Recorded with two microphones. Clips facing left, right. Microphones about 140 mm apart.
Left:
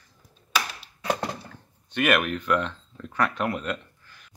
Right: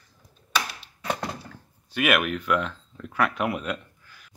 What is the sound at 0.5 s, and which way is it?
Typewriter, 5° left (ahead or behind).